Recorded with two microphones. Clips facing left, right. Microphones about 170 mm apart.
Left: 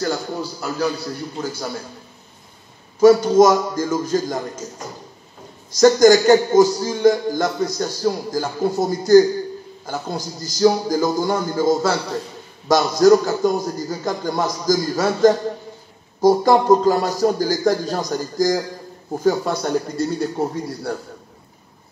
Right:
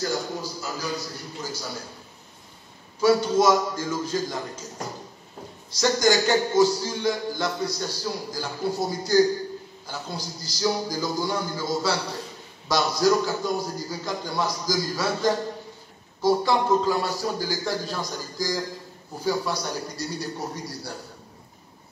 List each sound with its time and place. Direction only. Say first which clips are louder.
0.0 s a man's voice: left 5 dB; 65° left (ahead or behind)
3.0 s a man's voice: left 8 dB; 45° left (ahead or behind)
5.8 s a man's voice: left 10 dB; 45° left (ahead or behind)